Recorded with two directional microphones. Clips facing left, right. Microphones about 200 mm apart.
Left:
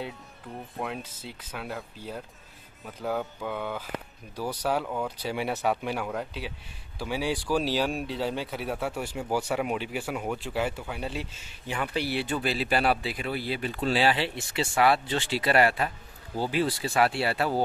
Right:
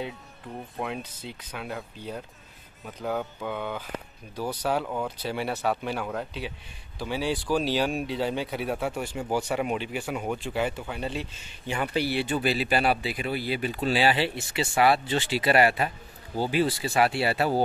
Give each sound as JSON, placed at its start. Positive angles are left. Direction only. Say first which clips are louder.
{"t": 0.7, "sound": "speech", "louder": "right 1 dB", "side_deg": 0}
{"t": 5.2, "sound": "speech", "louder": "left 1 dB", "side_deg": 10}